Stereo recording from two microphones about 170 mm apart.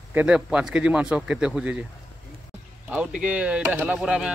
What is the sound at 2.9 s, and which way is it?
Speech, 5° right (ahead or behind).